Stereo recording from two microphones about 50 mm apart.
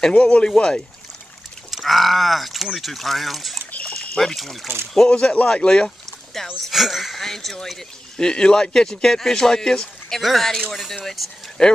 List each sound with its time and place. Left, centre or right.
0.0 s speech: left
1.7 s speech: centre
3.7 s a sound: left
4.1 s speech: centre
6.7 s speech: centre